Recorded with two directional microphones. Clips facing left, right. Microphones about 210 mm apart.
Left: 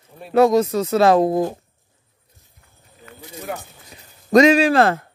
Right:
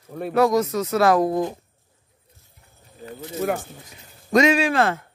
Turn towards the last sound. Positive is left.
turn(degrees=35)  # may be behind; listen again after turning